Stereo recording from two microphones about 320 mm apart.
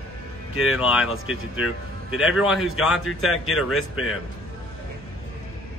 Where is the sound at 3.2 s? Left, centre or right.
Left.